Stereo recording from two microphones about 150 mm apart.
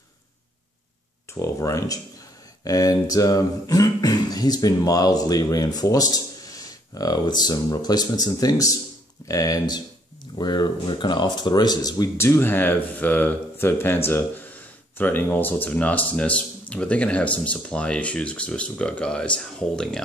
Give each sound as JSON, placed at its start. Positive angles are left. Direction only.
{"t": 1.3, "sound": "speech", "side_deg": 20}